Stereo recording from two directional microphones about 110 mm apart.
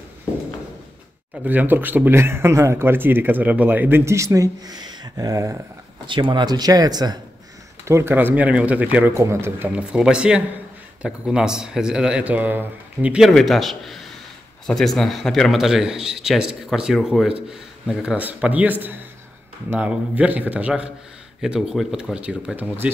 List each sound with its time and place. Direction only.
1.4 s speech: 15° right (ahead or behind); by 5.6 s 30° right (ahead or behind)
6.0 s speech: 45° right (ahead or behind)
7.8 s speech: 25° right (ahead or behind)
9.1 s speech: 25° right (ahead or behind)
9.7 s speech: 10° right (ahead or behind)
13.3 s speech: centre (ahead or behind); by 22.8 s 15° right (ahead or behind)